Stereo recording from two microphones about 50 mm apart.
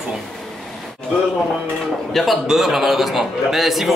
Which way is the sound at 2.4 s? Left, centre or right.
Centre.